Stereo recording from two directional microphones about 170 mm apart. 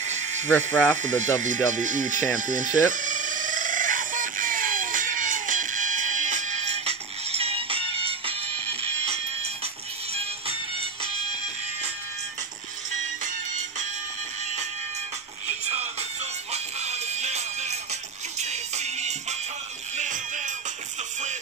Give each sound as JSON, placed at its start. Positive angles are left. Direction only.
{"t": 0.0, "sound": "a sound", "side_deg": -45}
{"t": 0.5, "sound": "speech", "side_deg": 10}
{"t": 1.0, "sound": "speech", "side_deg": -45}
{"t": 2.9, "sound": "music", "side_deg": -50}
{"t": 16.5, "sound": "music", "side_deg": -40}